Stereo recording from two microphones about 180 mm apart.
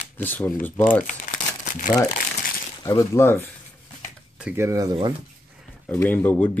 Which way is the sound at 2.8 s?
15° left (ahead or behind).